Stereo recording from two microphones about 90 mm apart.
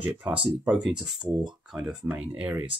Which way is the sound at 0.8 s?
5° right (ahead or behind).